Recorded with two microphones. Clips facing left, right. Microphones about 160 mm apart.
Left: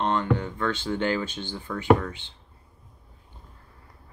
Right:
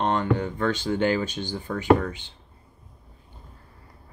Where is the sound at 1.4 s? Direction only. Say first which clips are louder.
Right 3 dB; 40° right (ahead or behind).